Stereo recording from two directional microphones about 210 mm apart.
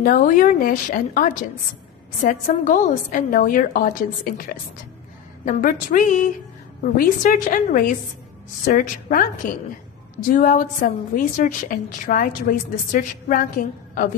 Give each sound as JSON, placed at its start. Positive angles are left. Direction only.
{"t": 0.0, "sound": "a woman's voice", "side_deg": 45}